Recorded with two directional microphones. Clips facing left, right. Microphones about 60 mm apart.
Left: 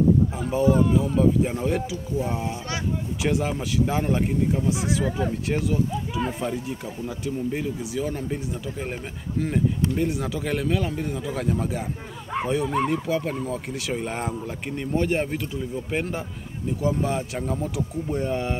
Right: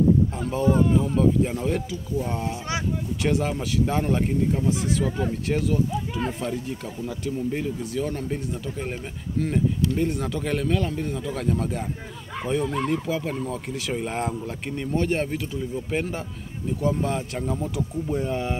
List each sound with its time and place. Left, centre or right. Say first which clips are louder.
0.4 s speech: left 1 dB; centre
9.9 s speech: even; centre